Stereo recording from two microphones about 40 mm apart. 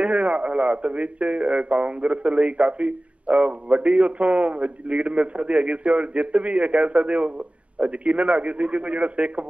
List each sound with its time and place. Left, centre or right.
0.0 s a man's voice: right